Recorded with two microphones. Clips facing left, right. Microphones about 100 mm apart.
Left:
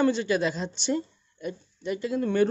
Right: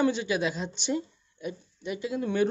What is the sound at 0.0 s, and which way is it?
A man's voice, 10° right (ahead or behind).